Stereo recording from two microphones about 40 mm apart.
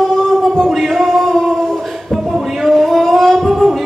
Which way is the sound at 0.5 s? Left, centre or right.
Centre.